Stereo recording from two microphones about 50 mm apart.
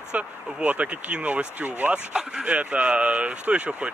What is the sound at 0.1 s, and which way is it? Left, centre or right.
Speech, right.